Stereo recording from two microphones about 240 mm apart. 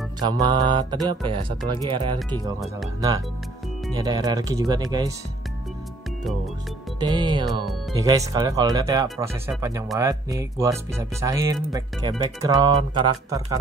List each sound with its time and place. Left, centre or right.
0.2 s mantra: centre
3.9 s speech: centre
7.0 s mantra: centre
7.9 s speech: centre